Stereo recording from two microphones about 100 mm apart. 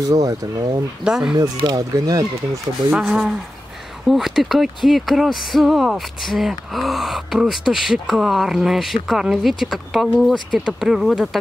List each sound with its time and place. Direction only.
0.1 s speech: 40° right (ahead or behind)
1.0 s speech: 5° right (ahead or behind)
1.8 s speech: 40° right (ahead or behind)
2.9 s speech: 10° right (ahead or behind)